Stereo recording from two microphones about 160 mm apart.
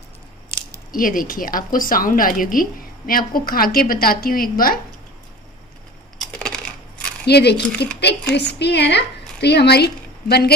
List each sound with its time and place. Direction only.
0.9 s a woman's voice: 60° left (ahead or behind)
6.1 s coin: 5° left (ahead or behind)
7.2 s a woman's voice: 90° left